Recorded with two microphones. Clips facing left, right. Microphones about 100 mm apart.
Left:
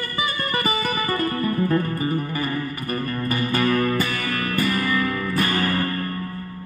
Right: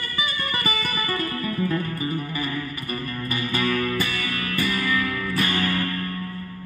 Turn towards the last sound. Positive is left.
turn(degrees=40)  # may be behind; listen again after turning